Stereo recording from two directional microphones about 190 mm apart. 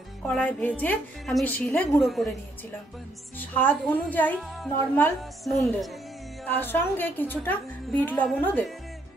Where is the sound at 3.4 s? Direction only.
10° left (ahead or behind).